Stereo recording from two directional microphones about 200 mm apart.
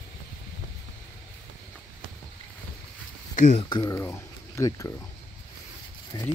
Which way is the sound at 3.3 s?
40° left (ahead or behind).